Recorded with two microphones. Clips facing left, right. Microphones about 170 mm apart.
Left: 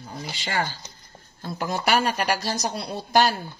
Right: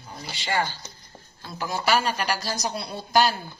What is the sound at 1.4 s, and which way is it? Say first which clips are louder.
Chopping: left 2 dB; 55° left (ahead or behind).